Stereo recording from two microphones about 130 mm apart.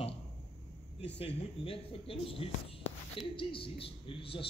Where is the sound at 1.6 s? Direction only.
45° left (ahead or behind).